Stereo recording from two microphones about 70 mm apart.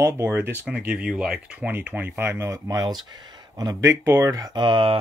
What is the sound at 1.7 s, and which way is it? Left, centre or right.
Speech, right.